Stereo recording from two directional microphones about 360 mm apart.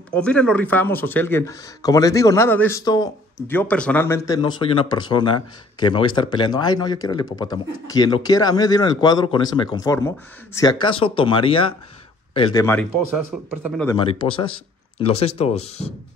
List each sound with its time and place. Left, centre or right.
0.1 s speech: centre
13.6 s speech: centre
13.8 s speech: centre